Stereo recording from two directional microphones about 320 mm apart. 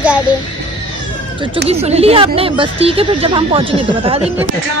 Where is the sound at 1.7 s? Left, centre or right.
Centre.